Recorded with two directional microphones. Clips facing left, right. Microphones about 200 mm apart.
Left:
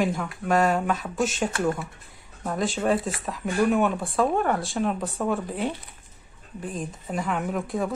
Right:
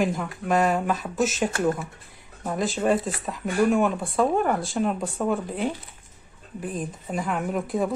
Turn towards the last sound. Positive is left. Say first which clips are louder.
# right 2 dB
turn(degrees=0)  # may be behind; listen again after turning